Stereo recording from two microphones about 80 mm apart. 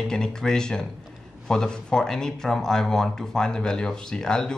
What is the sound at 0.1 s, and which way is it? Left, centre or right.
Speech, centre.